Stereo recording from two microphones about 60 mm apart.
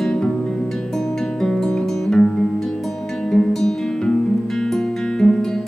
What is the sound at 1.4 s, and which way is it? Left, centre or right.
Music, centre.